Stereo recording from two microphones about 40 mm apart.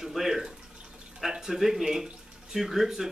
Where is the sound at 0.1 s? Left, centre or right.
Centre.